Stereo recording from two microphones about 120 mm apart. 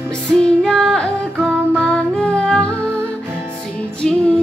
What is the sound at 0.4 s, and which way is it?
Female singing, 5° left (ahead or behind).